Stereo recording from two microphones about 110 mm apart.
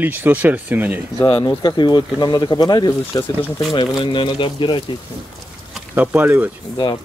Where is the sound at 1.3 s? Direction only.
40° left (ahead or behind).